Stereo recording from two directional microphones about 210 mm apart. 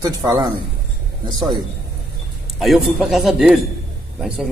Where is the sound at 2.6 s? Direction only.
Centre (ahead or behind).